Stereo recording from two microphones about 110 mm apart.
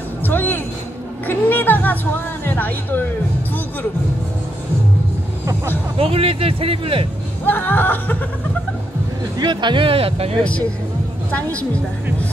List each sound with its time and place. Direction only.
0.2 s a woman's voice: 20° left (ahead or behind)
5.9 s a man's voice: 60° right (ahead or behind)
7.4 s a woman's voice: 15° left (ahead or behind)
9.4 s speech: 45° right (ahead or behind); by 10.3 s 60° right (ahead or behind)
11.3 s a woman's voice: 15° left (ahead or behind)